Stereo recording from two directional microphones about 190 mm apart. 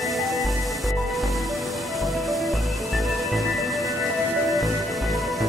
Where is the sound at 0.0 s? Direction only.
Centre (ahead or behind).